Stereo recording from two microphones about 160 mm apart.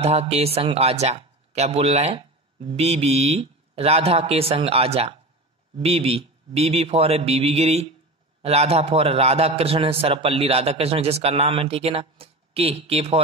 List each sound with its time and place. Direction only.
0.0 s speech: 40° right (ahead or behind)